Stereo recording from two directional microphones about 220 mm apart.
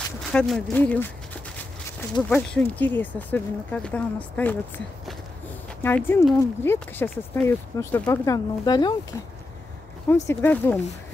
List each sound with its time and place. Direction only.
0.3 s speech: 5° left (ahead or behind)
10.0 s speech: 10° left (ahead or behind)